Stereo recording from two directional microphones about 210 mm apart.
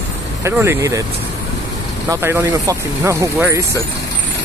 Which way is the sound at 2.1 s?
10° right (ahead or behind).